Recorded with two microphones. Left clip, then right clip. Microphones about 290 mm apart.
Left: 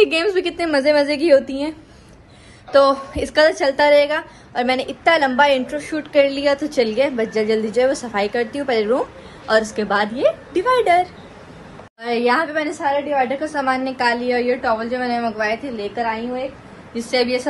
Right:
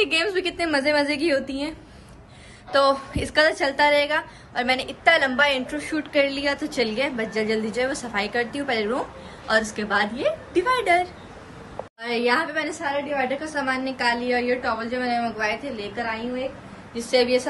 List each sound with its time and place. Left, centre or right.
0.0 s a woman's voice: centre
12.0 s a woman's voice: centre